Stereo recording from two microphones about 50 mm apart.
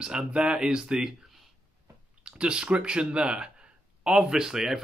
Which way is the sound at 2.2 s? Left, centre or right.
Centre.